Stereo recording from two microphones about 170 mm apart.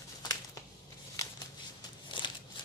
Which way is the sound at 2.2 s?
30° left (ahead or behind).